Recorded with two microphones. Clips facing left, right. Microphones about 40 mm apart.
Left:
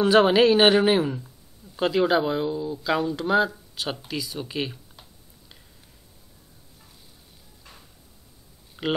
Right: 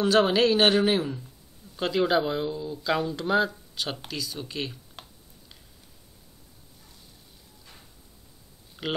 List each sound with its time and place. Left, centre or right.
0.0 s speech: centre
5.0 s computer keyboard: right
8.8 s a sound: centre